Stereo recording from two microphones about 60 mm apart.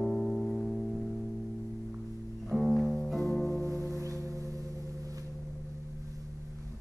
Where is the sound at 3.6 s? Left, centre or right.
Right.